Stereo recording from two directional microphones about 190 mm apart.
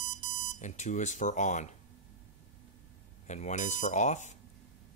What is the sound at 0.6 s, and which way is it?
Speech, 40° left (ahead or behind).